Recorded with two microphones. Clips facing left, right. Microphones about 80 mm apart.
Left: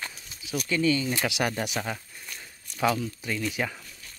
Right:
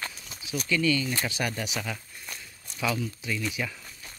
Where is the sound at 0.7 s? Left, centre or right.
Left.